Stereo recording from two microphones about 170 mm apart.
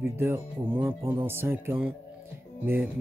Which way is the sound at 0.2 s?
15° right (ahead or behind).